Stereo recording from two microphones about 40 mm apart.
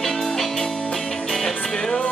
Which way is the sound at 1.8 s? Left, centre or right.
Left.